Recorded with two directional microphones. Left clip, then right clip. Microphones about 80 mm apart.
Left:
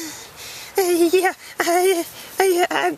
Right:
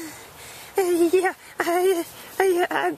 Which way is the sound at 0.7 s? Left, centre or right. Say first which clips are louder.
Left 3 dB; left.